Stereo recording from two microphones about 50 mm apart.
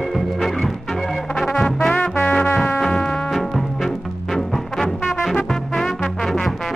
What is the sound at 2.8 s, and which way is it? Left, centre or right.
Music, centre.